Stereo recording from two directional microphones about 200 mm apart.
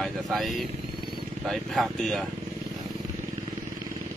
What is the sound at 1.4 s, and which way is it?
Speech, centre (ahead or behind).